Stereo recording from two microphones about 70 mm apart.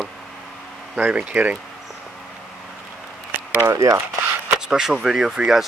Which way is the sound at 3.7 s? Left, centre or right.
Right.